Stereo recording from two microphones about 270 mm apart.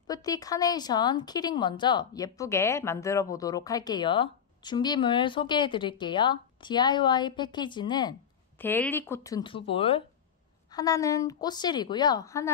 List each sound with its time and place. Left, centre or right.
0.0 s a woman's voice: centre